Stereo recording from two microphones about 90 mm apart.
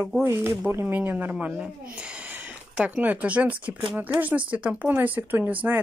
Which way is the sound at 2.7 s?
15° right (ahead or behind).